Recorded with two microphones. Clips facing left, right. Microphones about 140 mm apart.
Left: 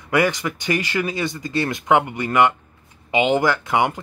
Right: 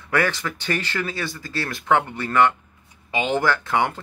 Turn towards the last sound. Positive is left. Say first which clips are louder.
# left 2 dB
turn(degrees=15)  # may be behind; listen again after turning